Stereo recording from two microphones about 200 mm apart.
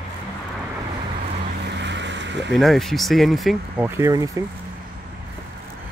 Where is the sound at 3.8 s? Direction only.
15° right (ahead or behind).